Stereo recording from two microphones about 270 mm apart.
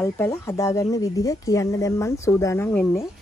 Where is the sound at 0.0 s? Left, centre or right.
Centre.